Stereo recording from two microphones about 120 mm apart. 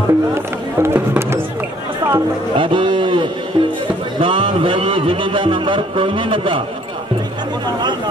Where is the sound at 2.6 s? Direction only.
45° right (ahead or behind).